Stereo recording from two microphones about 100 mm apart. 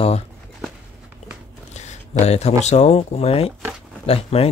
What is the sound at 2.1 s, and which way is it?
Speech, 90° left.